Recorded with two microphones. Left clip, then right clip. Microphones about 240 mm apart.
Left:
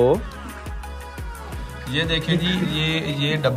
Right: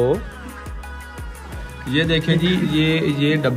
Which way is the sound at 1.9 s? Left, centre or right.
Centre.